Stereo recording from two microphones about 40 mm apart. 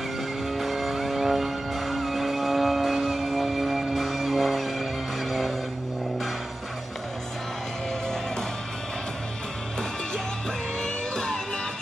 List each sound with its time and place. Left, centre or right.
0.5 s music: centre
10.8 s music: centre